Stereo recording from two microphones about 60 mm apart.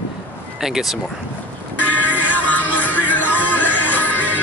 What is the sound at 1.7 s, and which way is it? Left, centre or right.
Music, left.